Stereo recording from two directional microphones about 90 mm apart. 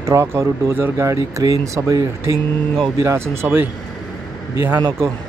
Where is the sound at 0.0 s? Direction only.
30° right (ahead or behind).